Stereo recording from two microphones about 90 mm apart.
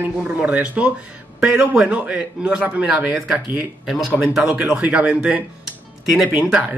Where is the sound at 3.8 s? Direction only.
Centre (ahead or behind).